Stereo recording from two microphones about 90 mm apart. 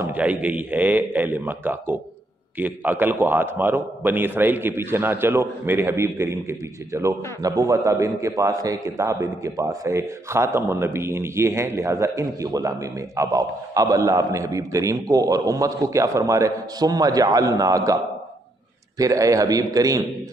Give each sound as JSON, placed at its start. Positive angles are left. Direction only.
{"t": 0.2, "sound": "a man's voice", "side_deg": -15}
{"t": 18.9, "sound": "a man's voice", "side_deg": -40}